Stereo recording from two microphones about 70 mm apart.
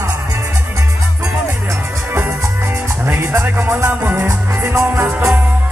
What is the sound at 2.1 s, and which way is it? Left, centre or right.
Music, right.